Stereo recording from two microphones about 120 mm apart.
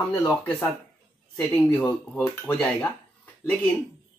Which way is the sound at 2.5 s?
15° left (ahead or behind).